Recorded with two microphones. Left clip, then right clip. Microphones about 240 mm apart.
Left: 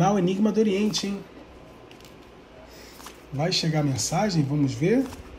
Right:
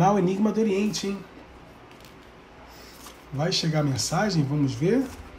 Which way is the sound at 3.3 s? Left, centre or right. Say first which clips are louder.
Even; centre.